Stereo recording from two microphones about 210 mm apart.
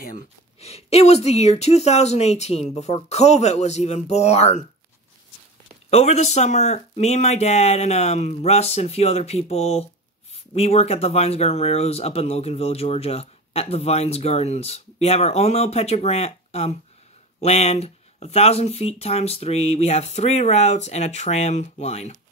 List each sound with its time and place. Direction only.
0.6 s speech: 30° left (ahead or behind)
5.9 s speech: 30° left (ahead or behind)